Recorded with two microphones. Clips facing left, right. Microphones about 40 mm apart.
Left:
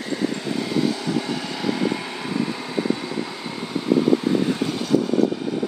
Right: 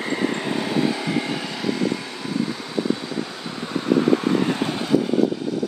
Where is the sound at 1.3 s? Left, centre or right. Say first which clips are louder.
Even; centre; by 2.7 s left.